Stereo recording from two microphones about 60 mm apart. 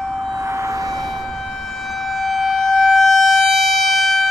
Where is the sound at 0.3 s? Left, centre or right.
Right.